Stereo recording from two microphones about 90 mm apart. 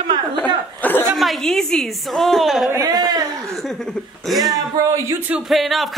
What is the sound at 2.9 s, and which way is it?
Speech, 45° right (ahead or behind).